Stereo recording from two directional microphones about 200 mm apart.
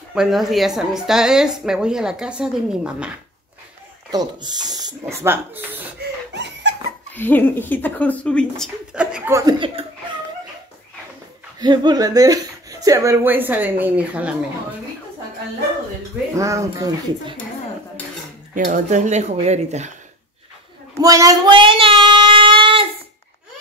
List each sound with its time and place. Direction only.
0.1 s a woman's voice: centre (ahead or behind)
4.1 s speech: 20° right (ahead or behind)
5.9 s a sound: 60° right (ahead or behind)
7.2 s speech: 10° left (ahead or behind)
8.9 s speech: 5° right (ahead or behind); by 9.8 s 20° right (ahead or behind)
11.6 s speech: 20° right (ahead or behind)
16.3 s speech: 15° right (ahead or behind)
18.5 s speech: 40° right (ahead or behind)
20.9 s child singing: 15° right (ahead or behind)